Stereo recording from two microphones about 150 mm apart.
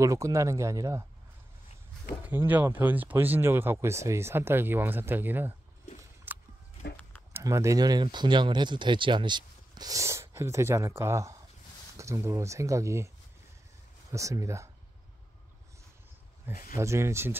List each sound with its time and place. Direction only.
0.0 s speech: 20° right (ahead or behind)
2.2 s speech: 10° right (ahead or behind)
6.3 s a sound: 10° right (ahead or behind)
7.3 s speech: 20° right (ahead or behind)
14.1 s speech: 20° right (ahead or behind)
16.7 s speech: 20° right (ahead or behind)